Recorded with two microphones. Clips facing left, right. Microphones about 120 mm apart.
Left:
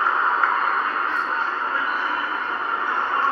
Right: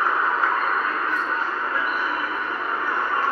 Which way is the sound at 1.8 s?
25° left (ahead or behind).